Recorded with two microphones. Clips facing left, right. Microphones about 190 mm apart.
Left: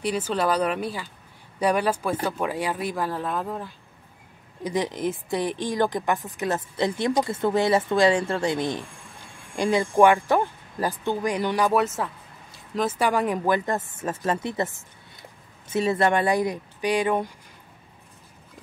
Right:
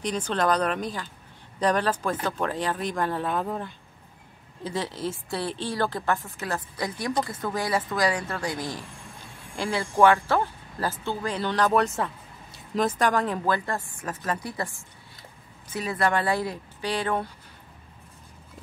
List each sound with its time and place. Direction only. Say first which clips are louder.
0.0 s a woman's voice: left 1 dB; 5° left (ahead or behind)
4.6 s a woman's voice: left 4 dB; 15° left (ahead or behind)